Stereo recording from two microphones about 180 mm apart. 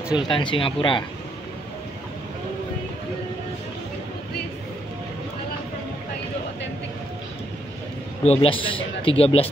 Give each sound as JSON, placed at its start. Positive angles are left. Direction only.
{"t": 0.3, "sound": "speech", "side_deg": 30}
{"t": 8.2, "sound": "a man's voice", "side_deg": 35}